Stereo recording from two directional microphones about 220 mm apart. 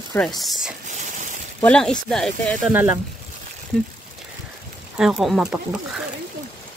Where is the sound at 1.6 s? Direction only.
5° left (ahead or behind).